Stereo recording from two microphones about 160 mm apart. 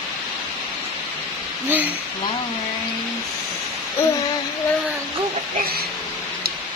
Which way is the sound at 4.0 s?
15° left (ahead or behind).